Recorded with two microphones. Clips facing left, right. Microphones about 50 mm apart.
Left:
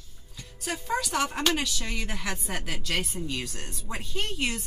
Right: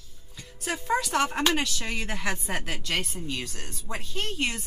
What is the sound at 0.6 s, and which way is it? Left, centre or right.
A woman's voice, centre.